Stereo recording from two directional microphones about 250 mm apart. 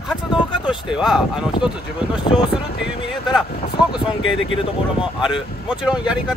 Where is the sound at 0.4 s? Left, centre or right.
Centre.